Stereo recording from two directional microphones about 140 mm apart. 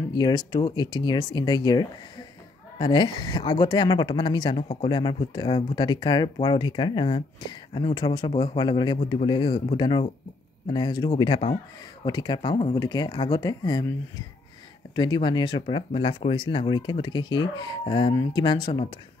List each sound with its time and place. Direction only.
0.1 s speech: 30° left (ahead or behind)
12.7 s speech: 30° left (ahead or behind)
15.0 s speech: 30° left (ahead or behind)
18.1 s speech: 25° left (ahead or behind)
18.4 s speech: 35° left (ahead or behind)